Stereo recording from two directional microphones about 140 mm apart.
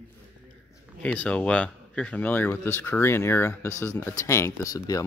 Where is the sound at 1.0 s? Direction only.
10° left (ahead or behind).